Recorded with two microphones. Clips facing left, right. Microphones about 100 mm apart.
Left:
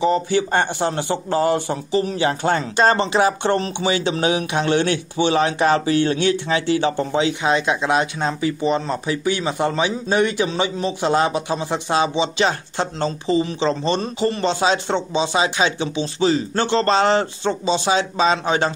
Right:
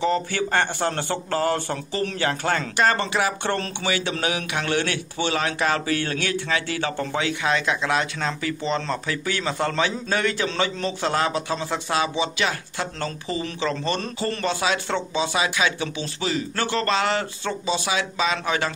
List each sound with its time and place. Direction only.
0.0 s a man's voice: 20° left (ahead or behind)